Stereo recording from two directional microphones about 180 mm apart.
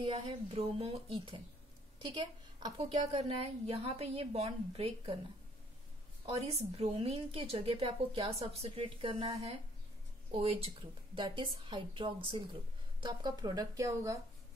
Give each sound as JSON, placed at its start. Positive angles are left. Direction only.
{"t": 0.0, "sound": "a woman's voice", "side_deg": -30}
{"t": 6.2, "sound": "a woman's voice", "side_deg": -35}
{"t": 10.3, "sound": "a woman's voice", "side_deg": -35}